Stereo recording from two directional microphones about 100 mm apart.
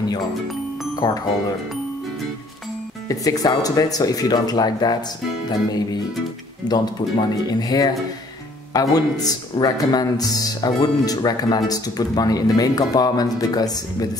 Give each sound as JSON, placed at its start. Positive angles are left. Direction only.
{"t": 0.9, "sound": "speech", "side_deg": 40}
{"t": 3.1, "sound": "speech", "side_deg": 40}
{"t": 5.5, "sound": "music", "side_deg": 45}
{"t": 6.7, "sound": "speech", "side_deg": 40}